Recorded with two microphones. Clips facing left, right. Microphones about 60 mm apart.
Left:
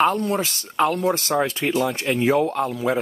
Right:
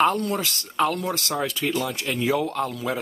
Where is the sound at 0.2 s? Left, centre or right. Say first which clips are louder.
Left 3 dB; left.